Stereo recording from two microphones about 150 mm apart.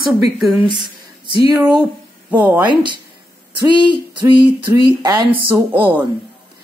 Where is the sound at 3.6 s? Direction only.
30° right (ahead or behind).